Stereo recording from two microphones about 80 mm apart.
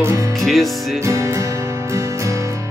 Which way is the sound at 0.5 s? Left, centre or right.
Centre.